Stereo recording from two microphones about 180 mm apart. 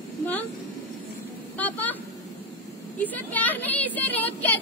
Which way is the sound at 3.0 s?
10° left (ahead or behind).